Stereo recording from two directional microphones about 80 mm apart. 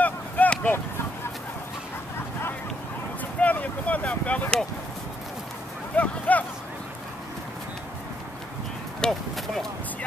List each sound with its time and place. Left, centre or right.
0.0 s a sound: centre
3.3 s speech: centre
5.9 s speech: centre
9.0 s speech: centre